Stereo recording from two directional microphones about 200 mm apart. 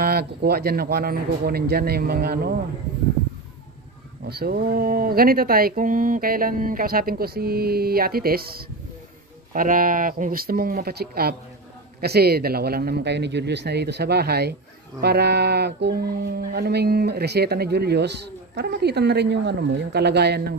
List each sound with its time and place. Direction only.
0.0 s speech: 50° right (ahead or behind)
4.3 s speech: 50° right (ahead or behind)